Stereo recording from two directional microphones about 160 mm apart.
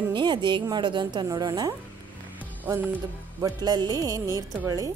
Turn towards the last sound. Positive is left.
turn(degrees=-20)  # may be behind; listen again after turning